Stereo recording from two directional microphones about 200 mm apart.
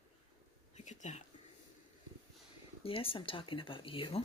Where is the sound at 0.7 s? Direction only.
35° left (ahead or behind).